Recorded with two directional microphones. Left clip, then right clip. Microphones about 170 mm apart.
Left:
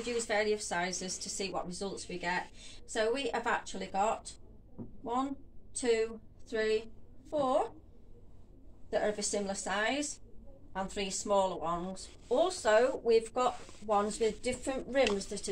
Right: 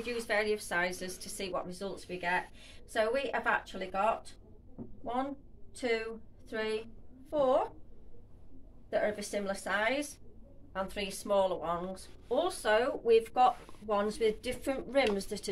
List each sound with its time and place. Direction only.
0.0 s a woman's voice: 20° right (ahead or behind)
5.8 s a woman's voice: 20° right (ahead or behind)
8.9 s a woman's voice: 15° right (ahead or behind)
12.6 s speech: 35° right (ahead or behind)